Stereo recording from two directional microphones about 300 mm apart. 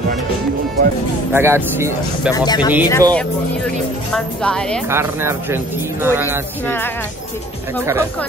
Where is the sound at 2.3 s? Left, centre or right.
Centre.